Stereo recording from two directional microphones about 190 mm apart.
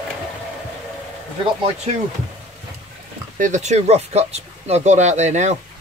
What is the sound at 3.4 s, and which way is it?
Speech, 40° right (ahead or behind).